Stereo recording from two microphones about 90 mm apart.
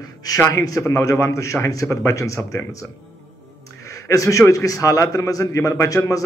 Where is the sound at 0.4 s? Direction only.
35° left (ahead or behind).